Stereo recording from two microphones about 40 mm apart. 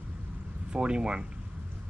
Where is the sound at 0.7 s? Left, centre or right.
Right.